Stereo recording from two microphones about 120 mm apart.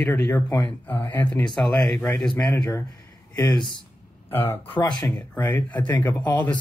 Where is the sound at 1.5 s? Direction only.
5° left (ahead or behind).